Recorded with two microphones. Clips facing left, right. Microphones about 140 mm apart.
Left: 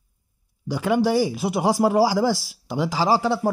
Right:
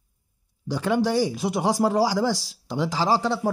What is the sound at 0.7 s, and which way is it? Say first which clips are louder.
Speech: left 2 dB; 10° left (ahead or behind).